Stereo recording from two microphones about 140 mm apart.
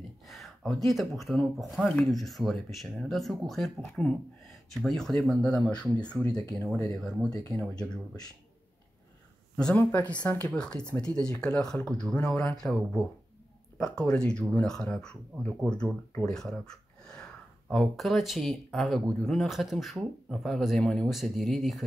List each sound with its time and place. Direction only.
0.3 s a sound: centre (ahead or behind)
0.9 s speech: centre (ahead or behind)
9.6 s speech: 5° left (ahead or behind)